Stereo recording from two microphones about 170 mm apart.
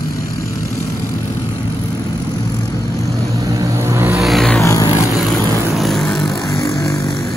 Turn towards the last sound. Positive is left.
turn(degrees=0)  # may be behind; listen again after turning